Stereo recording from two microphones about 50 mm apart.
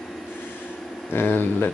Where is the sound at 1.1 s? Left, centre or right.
Left.